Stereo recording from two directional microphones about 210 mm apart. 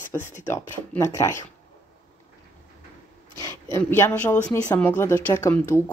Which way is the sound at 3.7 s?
10° left (ahead or behind).